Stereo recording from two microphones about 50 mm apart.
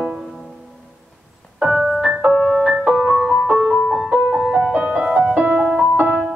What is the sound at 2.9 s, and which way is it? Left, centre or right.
Music, right.